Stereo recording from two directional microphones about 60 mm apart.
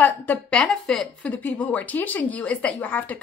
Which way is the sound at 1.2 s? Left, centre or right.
Left.